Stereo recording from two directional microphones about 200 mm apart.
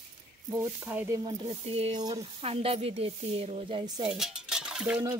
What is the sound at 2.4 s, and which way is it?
Speech, 30° right (ahead or behind).